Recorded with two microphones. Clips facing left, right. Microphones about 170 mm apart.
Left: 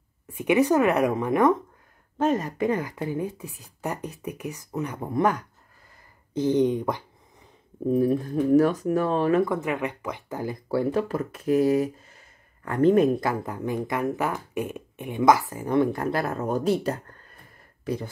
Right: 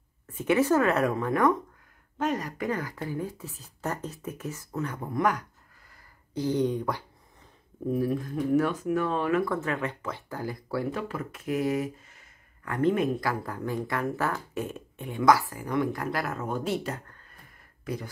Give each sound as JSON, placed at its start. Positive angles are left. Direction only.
{"t": 0.3, "sound": "speech", "side_deg": 15}
{"t": 9.4, "sound": "speech", "side_deg": 15}
{"t": 13.2, "sound": "speech", "side_deg": 20}
{"t": 16.4, "sound": "speech", "side_deg": 40}